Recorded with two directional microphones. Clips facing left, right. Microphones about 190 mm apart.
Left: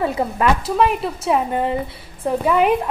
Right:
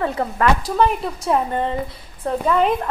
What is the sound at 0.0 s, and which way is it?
A woman's voice, 15° left (ahead or behind).